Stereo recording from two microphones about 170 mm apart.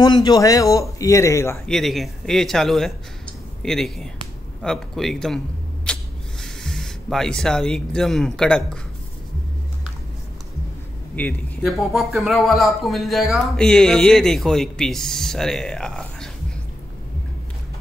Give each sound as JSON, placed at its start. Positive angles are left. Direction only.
{"t": 0.0, "sound": "speech", "side_deg": 25}
{"t": 1.7, "sound": "speech", "side_deg": 0}
{"t": 5.9, "sound": "a sound", "side_deg": 5}
{"t": 6.4, "sound": "speech", "side_deg": 5}
{"t": 11.2, "sound": "a man's voice", "side_deg": 10}
{"t": 11.6, "sound": "speech", "side_deg": 0}